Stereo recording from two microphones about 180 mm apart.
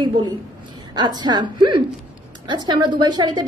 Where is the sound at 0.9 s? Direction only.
25° right (ahead or behind).